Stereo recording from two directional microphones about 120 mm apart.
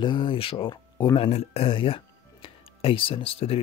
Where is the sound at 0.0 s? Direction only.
40° left (ahead or behind).